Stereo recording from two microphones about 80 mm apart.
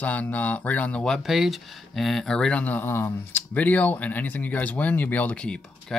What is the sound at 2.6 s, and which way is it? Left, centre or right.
Speech, left.